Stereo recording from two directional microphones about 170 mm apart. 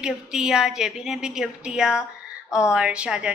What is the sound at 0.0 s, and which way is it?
A woman's voice, 5° right (ahead or behind).